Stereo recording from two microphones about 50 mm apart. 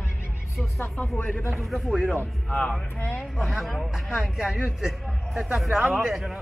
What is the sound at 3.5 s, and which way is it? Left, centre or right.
Speech, centre.